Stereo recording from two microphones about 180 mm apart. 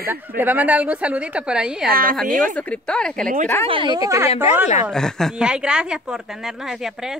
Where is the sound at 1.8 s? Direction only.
55° right (ahead or behind).